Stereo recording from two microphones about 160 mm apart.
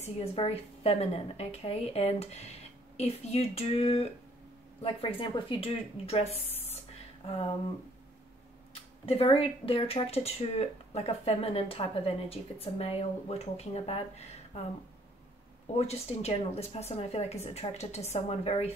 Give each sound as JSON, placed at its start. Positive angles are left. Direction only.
{"t": 0.0, "sound": "speech", "side_deg": 40}
{"t": 9.0, "sound": "speech", "side_deg": 35}
{"t": 15.8, "sound": "speech", "side_deg": 40}